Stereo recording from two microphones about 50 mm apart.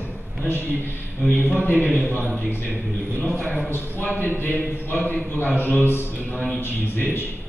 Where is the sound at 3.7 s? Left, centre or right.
Left.